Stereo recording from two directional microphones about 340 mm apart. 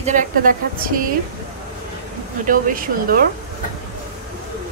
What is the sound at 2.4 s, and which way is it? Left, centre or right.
Speech, right.